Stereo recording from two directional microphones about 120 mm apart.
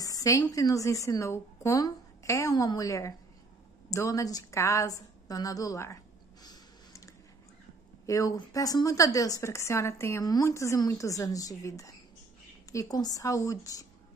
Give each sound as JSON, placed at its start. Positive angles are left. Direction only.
{"t": 0.0, "sound": "a woman's voice", "side_deg": 30}
{"t": 6.4, "sound": "a sound", "side_deg": 30}
{"t": 8.1, "sound": "a woman's voice", "side_deg": 30}